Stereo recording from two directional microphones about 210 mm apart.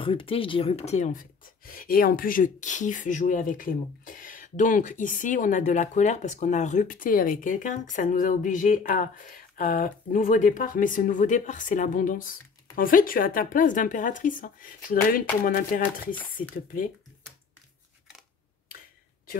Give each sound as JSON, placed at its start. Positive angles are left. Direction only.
{"t": 0.0, "sound": "speech", "side_deg": 25}